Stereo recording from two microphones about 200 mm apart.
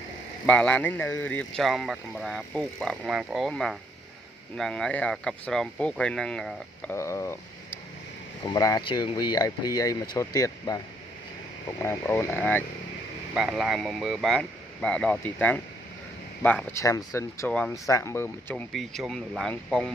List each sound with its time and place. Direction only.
0.5 s speech: 5° left (ahead or behind)
11.8 s speech: 10° left (ahead or behind)
13.3 s speech: 5° right (ahead or behind)
16.7 s speech: 15° left (ahead or behind)
18.7 s speech: centre (ahead or behind)